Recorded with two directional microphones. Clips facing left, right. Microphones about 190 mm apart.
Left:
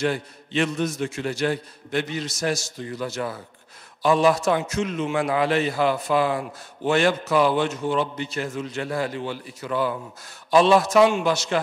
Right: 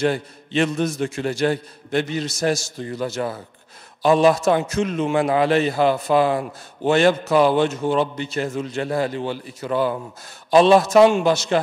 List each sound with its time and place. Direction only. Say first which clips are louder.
0.0 s a man's voice: right 4 dB; 35° right (ahead or behind)
10.9 s a man's voice: right 4 dB; 35° right (ahead or behind)